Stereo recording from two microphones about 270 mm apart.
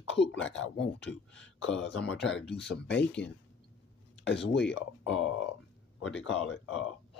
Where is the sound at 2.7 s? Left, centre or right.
Left.